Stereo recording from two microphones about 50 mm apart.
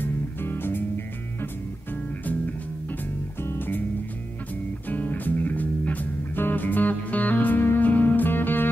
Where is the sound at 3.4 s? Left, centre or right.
Left.